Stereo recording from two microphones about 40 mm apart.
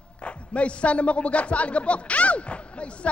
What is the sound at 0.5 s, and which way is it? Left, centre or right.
Music, left.